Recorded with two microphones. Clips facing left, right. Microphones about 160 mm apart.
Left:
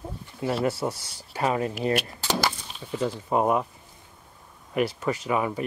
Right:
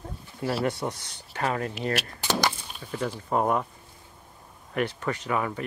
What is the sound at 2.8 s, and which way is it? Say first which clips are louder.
Speech: left 3 dB; 10° left (ahead or behind).